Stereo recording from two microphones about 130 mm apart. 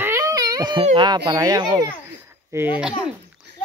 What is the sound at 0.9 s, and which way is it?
Speech, 35° right (ahead or behind).